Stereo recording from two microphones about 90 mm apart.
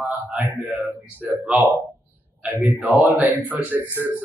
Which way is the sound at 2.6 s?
20° right (ahead or behind).